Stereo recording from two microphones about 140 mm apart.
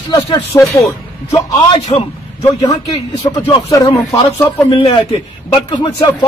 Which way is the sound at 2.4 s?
25° left (ahead or behind).